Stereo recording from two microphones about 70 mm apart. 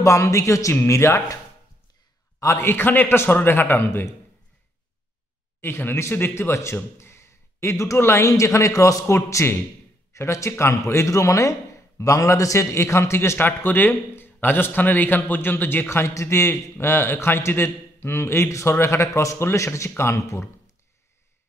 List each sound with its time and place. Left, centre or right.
0.0 s a man's voice: left
2.4 s a man's voice: left
5.6 s a man's voice: left
9.1 s a man's voice: left